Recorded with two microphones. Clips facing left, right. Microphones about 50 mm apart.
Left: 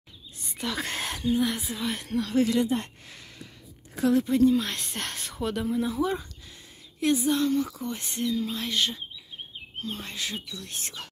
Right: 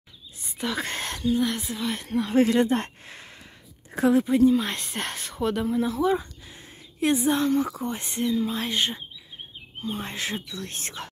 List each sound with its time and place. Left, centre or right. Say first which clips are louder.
0.5 s speech: right 2 dB; centre
2.3 s speech: right 4 dB; right
2.6 s speech: right 4 dB; right
3.1 s a sound: right 2 dB; right
4.1 s speech: right 2 dB; centre
7.0 s a woman's voice: right 2 dB; right
10.0 s speech: right 3 dB; right